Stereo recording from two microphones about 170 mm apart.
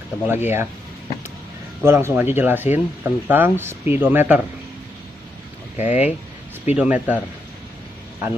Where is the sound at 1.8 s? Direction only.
15° right (ahead or behind).